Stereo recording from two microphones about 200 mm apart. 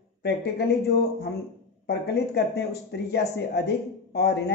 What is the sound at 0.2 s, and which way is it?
Speech, 55° left (ahead or behind).